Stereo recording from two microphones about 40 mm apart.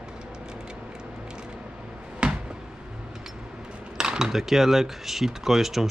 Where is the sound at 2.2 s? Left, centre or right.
Right.